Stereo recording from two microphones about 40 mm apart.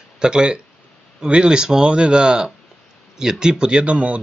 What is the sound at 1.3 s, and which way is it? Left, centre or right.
Speech, right.